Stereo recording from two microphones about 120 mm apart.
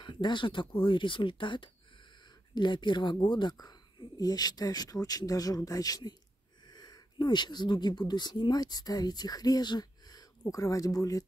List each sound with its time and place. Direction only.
0.0 s speech: 40° left (ahead or behind)
6.6 s a sound: 35° left (ahead or behind)
8.1 s speech: 35° left (ahead or behind)